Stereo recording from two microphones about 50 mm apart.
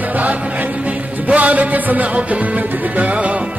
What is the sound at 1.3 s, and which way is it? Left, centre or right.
Music, right.